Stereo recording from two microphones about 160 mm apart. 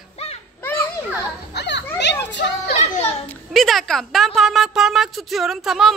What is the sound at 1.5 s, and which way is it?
A woman's voice, 90° left.